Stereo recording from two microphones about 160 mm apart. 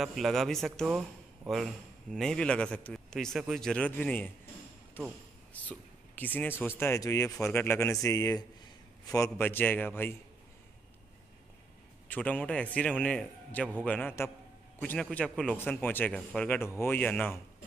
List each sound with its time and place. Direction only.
0.0 s a man's voice: centre (ahead or behind)
2.1 s a man's voice: 5° left (ahead or behind)
12.1 s a man's voice: 10° left (ahead or behind)